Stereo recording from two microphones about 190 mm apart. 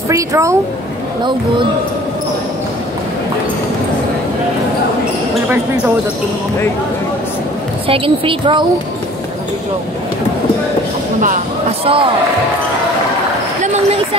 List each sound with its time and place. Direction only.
0.1 s a woman's voice: 15° right (ahead or behind)
7.9 s a woman's voice: 30° right (ahead or behind)
11.8 s a woman's voice: 30° right (ahead or behind)